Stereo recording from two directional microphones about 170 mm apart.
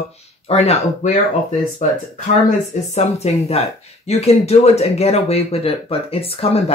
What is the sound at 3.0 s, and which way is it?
Speech, 40° left (ahead or behind).